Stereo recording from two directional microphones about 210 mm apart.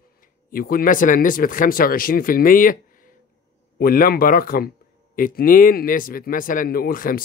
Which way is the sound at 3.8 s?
45° left (ahead or behind).